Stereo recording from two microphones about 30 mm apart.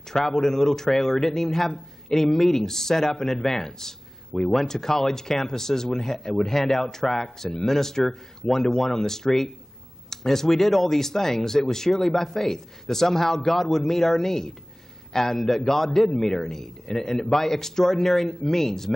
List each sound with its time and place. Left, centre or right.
0.3 s speech: centre